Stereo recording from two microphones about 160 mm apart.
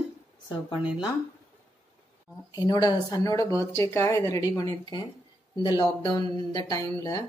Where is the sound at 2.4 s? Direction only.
25° left (ahead or behind).